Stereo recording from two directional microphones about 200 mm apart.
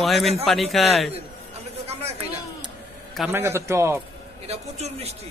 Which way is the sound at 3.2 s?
10° right (ahead or behind).